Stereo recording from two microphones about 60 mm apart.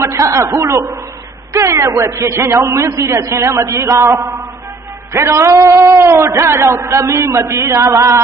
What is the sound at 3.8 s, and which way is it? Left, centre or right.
Speech, right.